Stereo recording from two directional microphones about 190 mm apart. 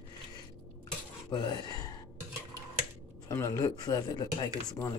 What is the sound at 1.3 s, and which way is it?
Speech, 20° left (ahead or behind).